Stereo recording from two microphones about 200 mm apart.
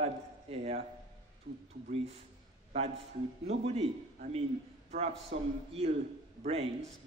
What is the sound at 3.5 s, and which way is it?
Speech, 30° right (ahead or behind).